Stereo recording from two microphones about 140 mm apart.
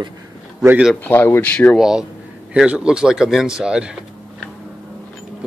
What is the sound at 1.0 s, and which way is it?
Speech, 15° left (ahead or behind).